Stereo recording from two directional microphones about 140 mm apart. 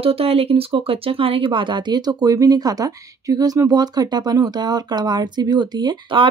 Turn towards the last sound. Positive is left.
turn(degrees=-35)  # may be behind; listen again after turning